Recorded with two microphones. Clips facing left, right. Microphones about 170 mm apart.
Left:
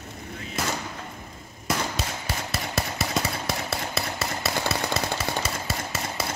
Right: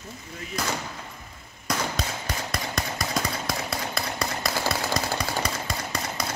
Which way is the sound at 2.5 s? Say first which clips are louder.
Left 2 dB; 5° left (ahead or behind).